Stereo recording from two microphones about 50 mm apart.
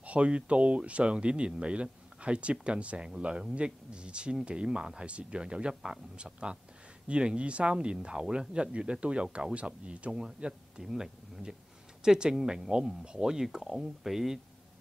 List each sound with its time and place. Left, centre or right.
0.0 s speech: right
10.8 s speech: centre